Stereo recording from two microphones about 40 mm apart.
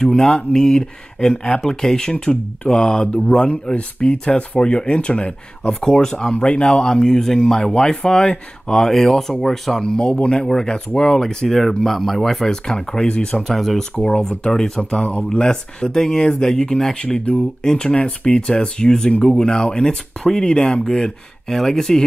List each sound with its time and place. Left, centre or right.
0.0 s speech: centre
13.6 s speech: centre
13.9 s speech: left